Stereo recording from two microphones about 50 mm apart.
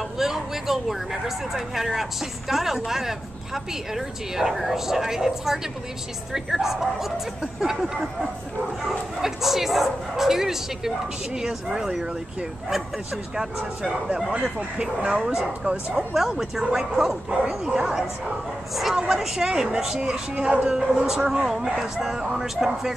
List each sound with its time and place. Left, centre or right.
0.2 s speech: centre; by 15.8 s right
16.1 s speech: centre; by 20.7 s right
20.7 s speech: centre